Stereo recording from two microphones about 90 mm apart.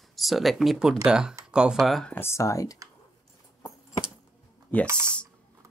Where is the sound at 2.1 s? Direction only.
30° left (ahead or behind).